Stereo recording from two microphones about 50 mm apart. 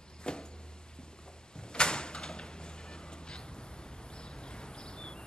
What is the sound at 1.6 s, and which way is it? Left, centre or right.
Door, centre.